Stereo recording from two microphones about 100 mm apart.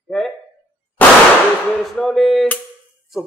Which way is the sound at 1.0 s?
15° left (ahead or behind).